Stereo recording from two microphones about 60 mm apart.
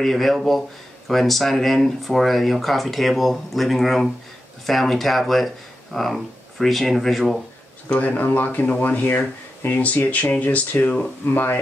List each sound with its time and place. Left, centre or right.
0.0 s speech: centre
7.9 s speech: left